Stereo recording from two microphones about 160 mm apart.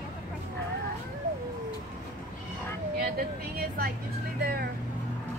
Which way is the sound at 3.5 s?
70° right (ahead or behind).